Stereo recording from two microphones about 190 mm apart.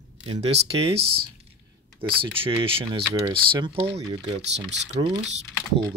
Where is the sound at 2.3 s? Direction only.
30° right (ahead or behind).